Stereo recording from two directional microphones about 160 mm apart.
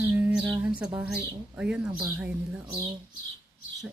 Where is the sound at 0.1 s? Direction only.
5° right (ahead or behind).